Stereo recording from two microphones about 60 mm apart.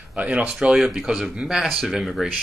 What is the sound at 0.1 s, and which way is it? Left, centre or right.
Speech, right.